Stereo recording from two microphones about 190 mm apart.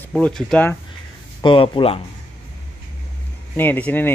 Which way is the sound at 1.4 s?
25° left (ahead or behind).